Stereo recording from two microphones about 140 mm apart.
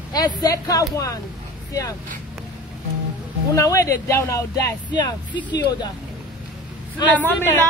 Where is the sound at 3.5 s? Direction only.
25° left (ahead or behind).